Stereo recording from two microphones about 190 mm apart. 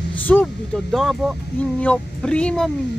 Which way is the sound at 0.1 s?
10° left (ahead or behind).